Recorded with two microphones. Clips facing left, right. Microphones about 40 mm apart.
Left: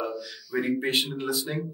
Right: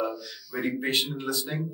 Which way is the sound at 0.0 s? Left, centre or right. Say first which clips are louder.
Right 1 dB; centre.